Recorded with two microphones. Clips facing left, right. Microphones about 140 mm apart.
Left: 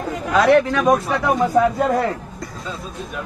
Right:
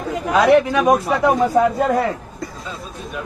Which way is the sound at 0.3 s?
5° right (ahead or behind).